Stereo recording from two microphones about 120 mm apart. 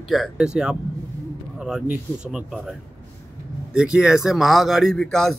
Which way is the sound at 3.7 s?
5° right (ahead or behind).